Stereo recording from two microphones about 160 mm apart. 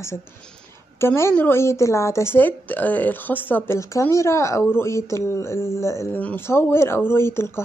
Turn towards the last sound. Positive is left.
turn(degrees=15)  # may be behind; listen again after turning